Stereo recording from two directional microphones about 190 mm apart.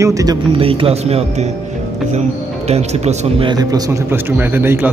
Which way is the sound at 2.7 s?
35° right (ahead or behind).